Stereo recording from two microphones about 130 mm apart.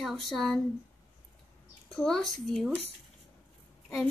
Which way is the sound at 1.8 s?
5° left (ahead or behind).